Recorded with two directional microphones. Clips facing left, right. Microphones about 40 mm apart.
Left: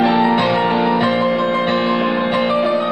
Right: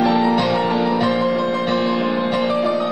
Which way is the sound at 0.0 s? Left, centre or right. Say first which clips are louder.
Left 2 dB; left.